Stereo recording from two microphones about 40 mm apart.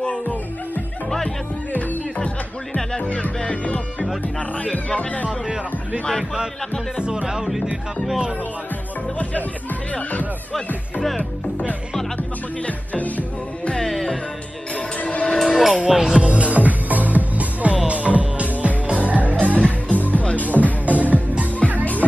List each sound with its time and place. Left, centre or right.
2.1 s music: left
4.9 s speech: left
7.0 s music: right
12.2 s music: left
13.7 s music: centre
15.0 s music: left
15.2 s music: centre
15.9 s music: centre
16.3 s music: right
19.4 s music: left
20.9 s music: right